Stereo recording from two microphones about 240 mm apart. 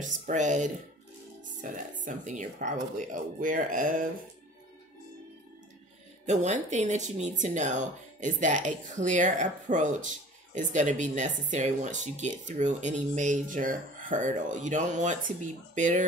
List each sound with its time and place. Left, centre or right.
0.0 s speech: right
6.2 s speech: right